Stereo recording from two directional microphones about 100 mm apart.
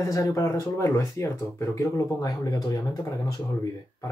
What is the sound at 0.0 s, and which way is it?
Speech, 30° left (ahead or behind).